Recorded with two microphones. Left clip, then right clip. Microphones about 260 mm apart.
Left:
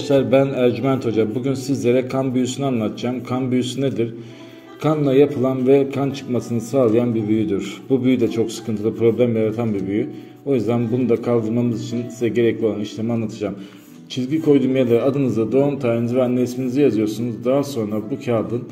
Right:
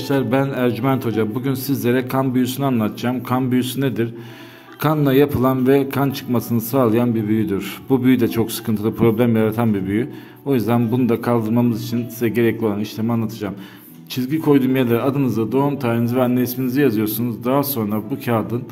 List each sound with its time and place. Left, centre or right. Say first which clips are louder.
0.1 s a man's voice: left 4 dB; centre
14.1 s a man's voice: even; right